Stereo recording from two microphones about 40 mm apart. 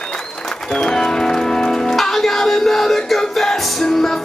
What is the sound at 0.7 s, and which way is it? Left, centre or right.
Music, centre.